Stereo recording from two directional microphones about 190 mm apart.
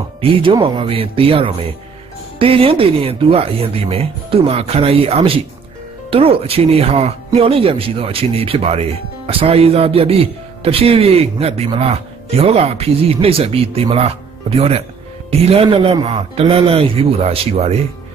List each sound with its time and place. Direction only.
0.2 s speech: 25° right (ahead or behind)